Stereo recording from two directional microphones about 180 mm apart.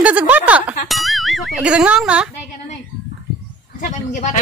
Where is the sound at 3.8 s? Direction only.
45° left (ahead or behind).